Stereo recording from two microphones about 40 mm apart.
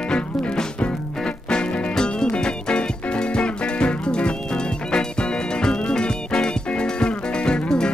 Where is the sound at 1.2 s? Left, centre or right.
Left.